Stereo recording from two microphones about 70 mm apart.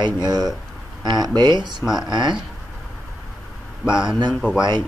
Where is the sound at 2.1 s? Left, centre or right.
Right.